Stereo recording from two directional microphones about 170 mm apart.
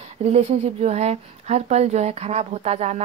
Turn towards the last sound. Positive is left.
turn(degrees=-40)  # may be behind; listen again after turning